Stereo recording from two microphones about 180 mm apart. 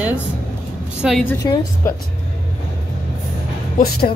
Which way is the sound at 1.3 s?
15° left (ahead or behind).